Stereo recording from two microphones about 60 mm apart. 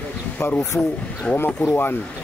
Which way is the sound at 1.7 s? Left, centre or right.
Left.